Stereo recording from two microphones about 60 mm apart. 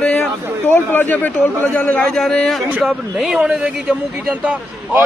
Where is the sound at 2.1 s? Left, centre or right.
Centre.